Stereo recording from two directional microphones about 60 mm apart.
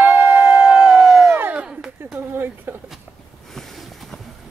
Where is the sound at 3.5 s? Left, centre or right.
Centre.